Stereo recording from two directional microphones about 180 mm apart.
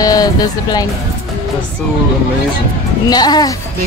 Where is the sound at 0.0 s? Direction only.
20° left (ahead or behind).